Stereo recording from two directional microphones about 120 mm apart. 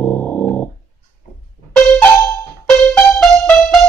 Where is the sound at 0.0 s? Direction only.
15° left (ahead or behind).